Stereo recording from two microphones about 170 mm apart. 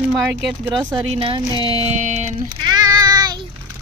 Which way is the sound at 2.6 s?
20° right (ahead or behind).